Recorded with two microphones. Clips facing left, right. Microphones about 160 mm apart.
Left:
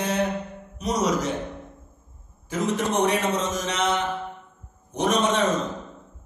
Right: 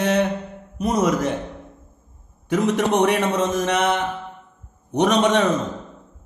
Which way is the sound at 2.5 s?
70° right (ahead or behind).